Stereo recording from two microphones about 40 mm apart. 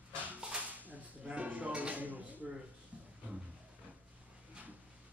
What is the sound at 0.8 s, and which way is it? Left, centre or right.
Drawer open or close, right.